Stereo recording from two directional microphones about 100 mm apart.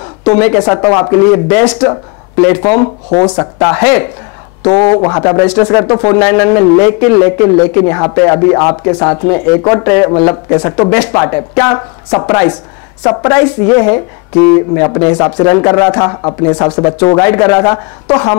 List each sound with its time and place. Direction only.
0.2 s a man's voice: 15° left (ahead or behind)
1.6 s a man's voice: 10° left (ahead or behind)
4.6 s a man's voice: 30° left (ahead or behind)
5.4 s a man's voice: 15° left (ahead or behind)